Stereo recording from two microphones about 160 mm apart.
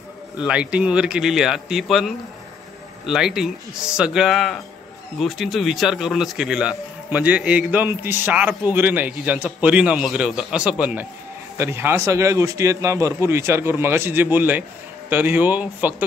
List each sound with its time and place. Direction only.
0.4 s a man's voice: 5° right (ahead or behind)